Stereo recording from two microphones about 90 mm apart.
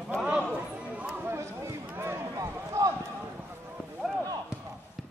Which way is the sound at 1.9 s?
25° right (ahead or behind).